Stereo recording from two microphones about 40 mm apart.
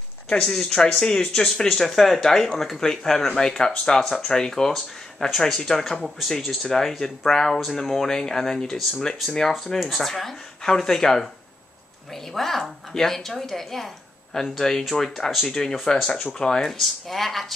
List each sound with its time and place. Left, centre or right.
0.3 s a woman's voice: centre
1.8 s a woman's voice: centre
6.0 s speech: centre
6.3 s a woman's voice: centre
8.1 s a woman's voice: centre